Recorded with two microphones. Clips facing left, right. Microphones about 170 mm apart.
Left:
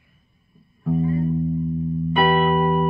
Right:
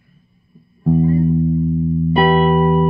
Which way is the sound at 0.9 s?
35° right (ahead or behind).